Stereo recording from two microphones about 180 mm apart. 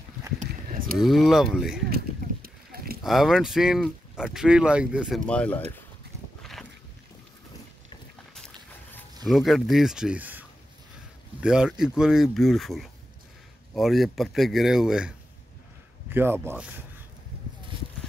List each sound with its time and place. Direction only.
0.4 s a sound: 45° right (ahead or behind)
0.9 s speech: centre (ahead or behind)
1.9 s a sound: 55° right (ahead or behind)
3.0 s speech: centre (ahead or behind)
5.3 s speech: 5° left (ahead or behind)
9.2 s speech: centre (ahead or behind)
11.4 s speech: 5° right (ahead or behind)